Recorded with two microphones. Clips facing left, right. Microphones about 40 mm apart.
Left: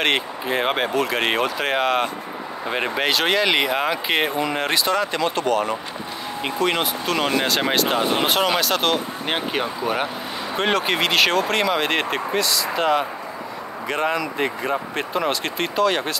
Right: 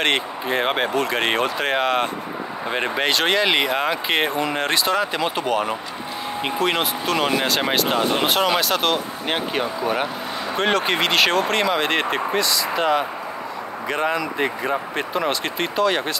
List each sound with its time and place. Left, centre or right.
0.0 s speech: centre